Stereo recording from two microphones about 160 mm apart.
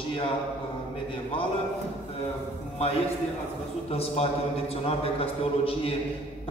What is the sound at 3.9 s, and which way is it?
A man's voice, 40° left (ahead or behind).